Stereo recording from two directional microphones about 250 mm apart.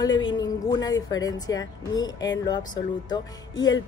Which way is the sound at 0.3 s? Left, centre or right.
Centre.